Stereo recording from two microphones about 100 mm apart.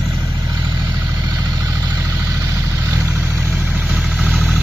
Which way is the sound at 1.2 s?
40° right (ahead or behind).